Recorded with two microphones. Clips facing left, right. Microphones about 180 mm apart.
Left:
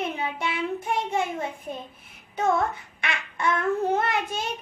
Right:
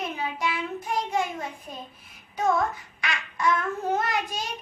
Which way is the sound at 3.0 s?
25° left (ahead or behind).